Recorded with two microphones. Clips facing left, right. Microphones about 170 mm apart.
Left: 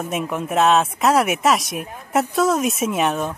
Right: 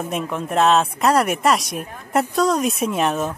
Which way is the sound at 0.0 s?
5° left (ahead or behind).